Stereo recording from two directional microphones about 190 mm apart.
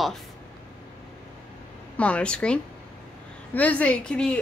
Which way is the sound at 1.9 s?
5° left (ahead or behind).